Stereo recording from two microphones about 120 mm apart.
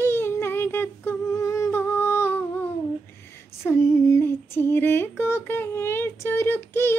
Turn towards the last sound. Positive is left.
turn(degrees=20)  # may be behind; listen again after turning